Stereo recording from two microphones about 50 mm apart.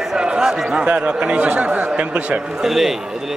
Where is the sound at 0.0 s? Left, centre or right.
Centre.